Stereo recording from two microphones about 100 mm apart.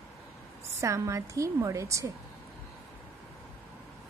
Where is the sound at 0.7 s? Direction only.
30° right (ahead or behind).